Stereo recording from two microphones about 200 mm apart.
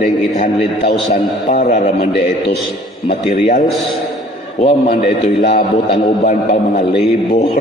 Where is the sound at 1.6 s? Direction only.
40° left (ahead or behind).